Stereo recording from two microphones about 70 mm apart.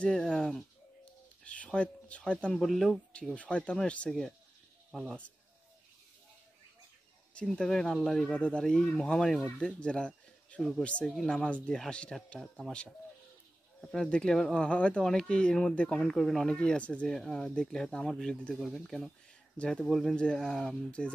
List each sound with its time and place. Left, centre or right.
0.0 s speech: centre
1.4 s speech: centre
2.6 s speech: centre
2.9 s speech: centre
4.9 s speech: centre
7.4 s speech: centre
8.3 s speech: centre
14.0 s speech: centre
16.5 s speech: centre
19.5 s speech: centre
19.8 s speech: centre